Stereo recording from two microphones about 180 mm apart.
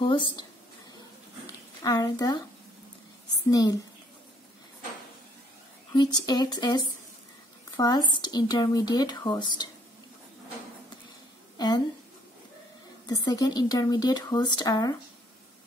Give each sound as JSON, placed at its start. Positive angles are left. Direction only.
{"t": 0.0, "sound": "speech", "side_deg": 25}
{"t": 1.8, "sound": "speech", "side_deg": 20}
{"t": 3.4, "sound": "speech", "side_deg": 20}
{"t": 5.9, "sound": "speech", "side_deg": 20}
{"t": 11.5, "sound": "a sound", "side_deg": 25}
{"t": 13.0, "sound": "speech", "side_deg": 20}